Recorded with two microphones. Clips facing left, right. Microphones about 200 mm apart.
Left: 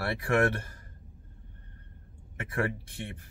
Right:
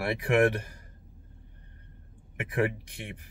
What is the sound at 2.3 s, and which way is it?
Speech, 15° right (ahead or behind).